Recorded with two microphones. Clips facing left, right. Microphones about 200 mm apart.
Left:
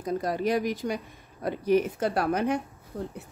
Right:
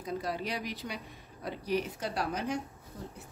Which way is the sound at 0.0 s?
45° left (ahead or behind).